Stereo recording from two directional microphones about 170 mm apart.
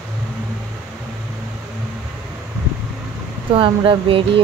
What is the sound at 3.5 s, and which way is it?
Speech, 30° right (ahead or behind).